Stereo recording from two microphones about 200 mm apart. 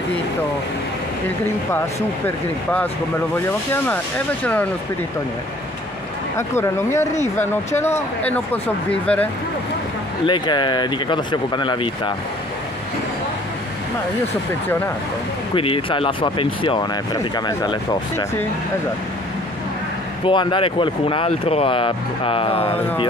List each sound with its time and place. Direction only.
2.2 s speech: 10° left (ahead or behind)
6.3 s speech: 15° left (ahead or behind)
10.2 s speech: 25° left (ahead or behind)
15.5 s speech: 25° left (ahead or behind)
20.2 s speech: 25° left (ahead or behind)